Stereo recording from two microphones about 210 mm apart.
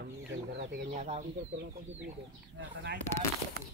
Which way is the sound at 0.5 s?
50° right (ahead or behind).